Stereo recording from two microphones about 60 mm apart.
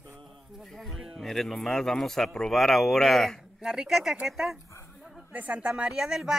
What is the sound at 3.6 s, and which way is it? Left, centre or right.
Speech, centre.